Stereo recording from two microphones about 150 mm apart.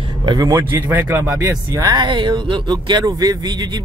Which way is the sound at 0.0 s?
30° right (ahead or behind).